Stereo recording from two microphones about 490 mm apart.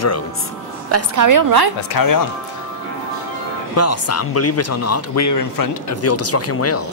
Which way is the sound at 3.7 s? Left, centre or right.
Left.